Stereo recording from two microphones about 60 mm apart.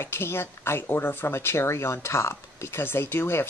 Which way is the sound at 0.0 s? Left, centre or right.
Left.